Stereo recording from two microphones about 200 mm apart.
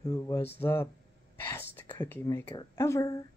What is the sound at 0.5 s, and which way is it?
Speech, 10° left (ahead or behind).